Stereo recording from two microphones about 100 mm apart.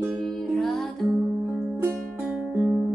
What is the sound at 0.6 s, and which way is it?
Music, centre (ahead or behind).